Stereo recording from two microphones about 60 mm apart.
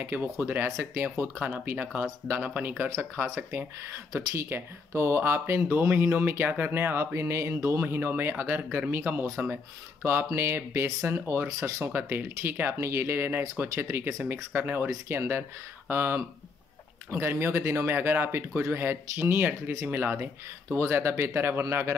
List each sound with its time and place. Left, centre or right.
0.0 s speech: right
4.1 s speech: right
5.9 s speech: right
6.1 s speech: right
20.7 s speech: right